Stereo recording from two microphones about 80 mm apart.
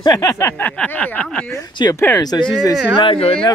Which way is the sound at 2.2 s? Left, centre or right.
Left.